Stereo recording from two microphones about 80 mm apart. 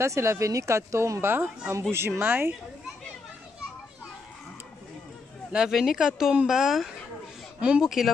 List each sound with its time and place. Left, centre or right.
0.0 s speech: right
5.5 s speech: centre